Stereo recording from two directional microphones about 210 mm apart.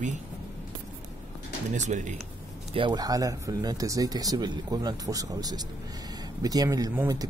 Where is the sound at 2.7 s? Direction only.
20° right (ahead or behind).